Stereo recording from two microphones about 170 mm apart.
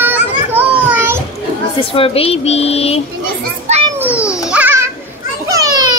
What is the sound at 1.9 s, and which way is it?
Speech, 35° left (ahead or behind).